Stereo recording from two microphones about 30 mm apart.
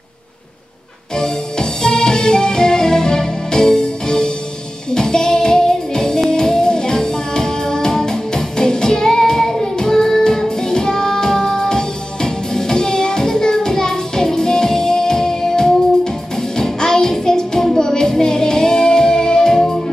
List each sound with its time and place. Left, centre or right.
1.1 s music: left